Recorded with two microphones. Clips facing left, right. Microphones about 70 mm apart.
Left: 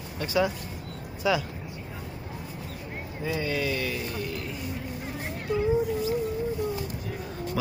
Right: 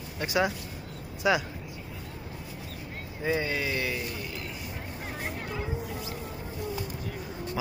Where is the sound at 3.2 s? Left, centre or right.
Right.